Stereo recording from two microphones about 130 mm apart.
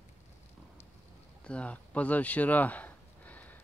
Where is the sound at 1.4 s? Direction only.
10° left (ahead or behind).